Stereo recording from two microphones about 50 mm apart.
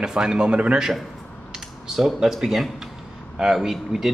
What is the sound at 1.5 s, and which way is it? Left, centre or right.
Speech, centre.